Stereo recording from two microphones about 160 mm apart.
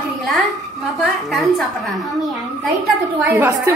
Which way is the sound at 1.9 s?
Centre (ahead or behind).